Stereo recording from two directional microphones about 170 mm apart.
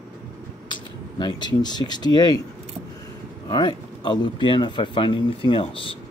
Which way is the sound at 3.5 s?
25° left (ahead or behind).